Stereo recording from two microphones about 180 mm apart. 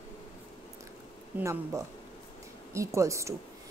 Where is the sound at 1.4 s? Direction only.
15° right (ahead or behind).